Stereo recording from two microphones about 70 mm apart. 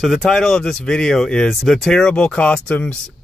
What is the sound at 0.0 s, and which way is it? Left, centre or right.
Speech, centre.